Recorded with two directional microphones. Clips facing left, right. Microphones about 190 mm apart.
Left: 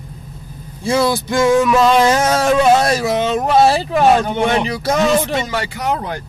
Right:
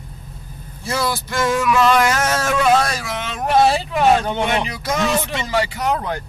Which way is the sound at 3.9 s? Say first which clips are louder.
Left 3 dB; 40° left (ahead or behind).